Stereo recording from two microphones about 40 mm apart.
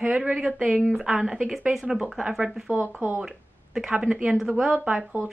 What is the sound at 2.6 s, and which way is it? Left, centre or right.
Speech, right.